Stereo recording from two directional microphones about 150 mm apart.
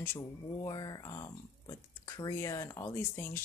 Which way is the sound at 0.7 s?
25° left (ahead or behind).